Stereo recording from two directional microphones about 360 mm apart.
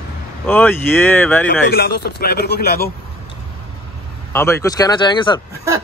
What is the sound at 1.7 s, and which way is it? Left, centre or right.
Speech, left.